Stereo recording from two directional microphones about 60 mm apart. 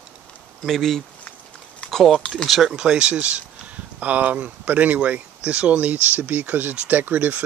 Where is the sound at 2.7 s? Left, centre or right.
Centre; by 7.4 s right.